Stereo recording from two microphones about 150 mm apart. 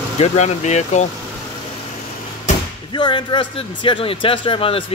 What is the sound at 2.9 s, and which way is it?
Speech, 30° left (ahead or behind).